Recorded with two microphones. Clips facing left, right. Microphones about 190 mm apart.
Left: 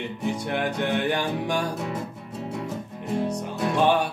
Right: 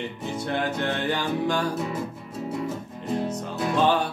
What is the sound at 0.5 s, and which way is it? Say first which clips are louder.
Music: right 1 dB; 15° left (ahead or behind).